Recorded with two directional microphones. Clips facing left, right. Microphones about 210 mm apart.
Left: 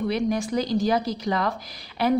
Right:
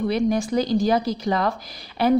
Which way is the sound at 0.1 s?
35° right (ahead or behind).